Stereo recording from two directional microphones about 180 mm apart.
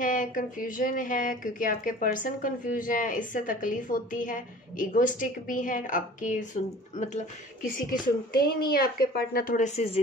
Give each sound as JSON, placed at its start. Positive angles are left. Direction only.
{"t": 0.0, "sound": "speech", "side_deg": 45}
{"t": 8.3, "sound": "a woman's voice", "side_deg": 60}